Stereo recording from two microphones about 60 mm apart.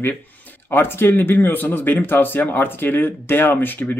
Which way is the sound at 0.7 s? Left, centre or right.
Left.